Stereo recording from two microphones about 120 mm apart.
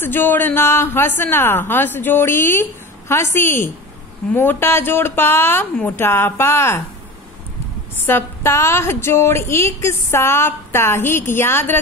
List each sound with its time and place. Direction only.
0.0 s a woman's voice: 15° left (ahead or behind)
8.0 s a woman's voice: 20° left (ahead or behind)